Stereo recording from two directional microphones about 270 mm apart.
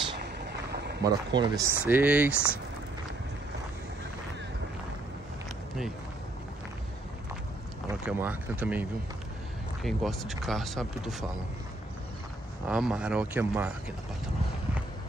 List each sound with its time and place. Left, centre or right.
0.2 s vehicle: right
1.0 s speech: centre
8.1 s speech: centre
9.8 s speech: centre
12.6 s speech: centre